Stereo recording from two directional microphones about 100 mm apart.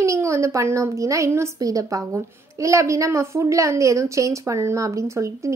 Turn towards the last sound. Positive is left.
turn(degrees=-30)  # may be behind; listen again after turning